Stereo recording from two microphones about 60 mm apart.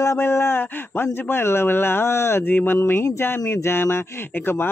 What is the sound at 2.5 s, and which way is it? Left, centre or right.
Speech, left.